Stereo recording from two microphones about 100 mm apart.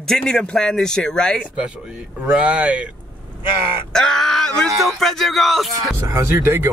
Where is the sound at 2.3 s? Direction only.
10° right (ahead or behind).